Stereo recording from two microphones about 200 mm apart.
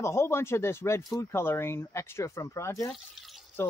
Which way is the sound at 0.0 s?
15° left (ahead or behind).